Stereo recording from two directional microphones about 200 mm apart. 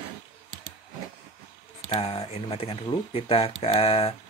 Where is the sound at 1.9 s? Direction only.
30° left (ahead or behind).